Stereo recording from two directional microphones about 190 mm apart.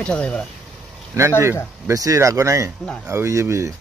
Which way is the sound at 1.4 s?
15° right (ahead or behind).